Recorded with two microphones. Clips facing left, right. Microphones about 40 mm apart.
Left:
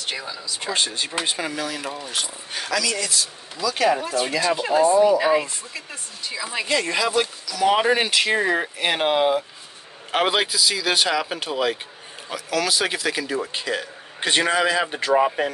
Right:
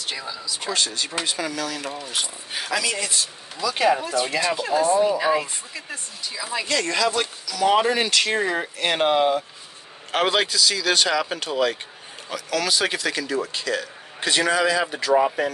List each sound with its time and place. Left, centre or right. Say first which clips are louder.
0.1 s a sound: even; centre
0.7 s a man's voice: left 2 dB; left
1.7 s speech: even; centre
2.5 s speech: left 1 dB; centre
2.8 s speech: left 1 dB; right
4.6 s speech: left 4 dB; centre
4.9 s speech: left 5 dB; centre
5.2 s speech: left 2 dB; centre
6.5 s speech: left 1 dB; centre
7.4 s speech: right 2 dB; centre
7.8 s speech: left 1 dB; centre
13.5 s a man's voice: even; left